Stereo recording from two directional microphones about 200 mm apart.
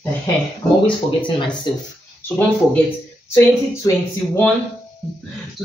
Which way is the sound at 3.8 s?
15° left (ahead or behind).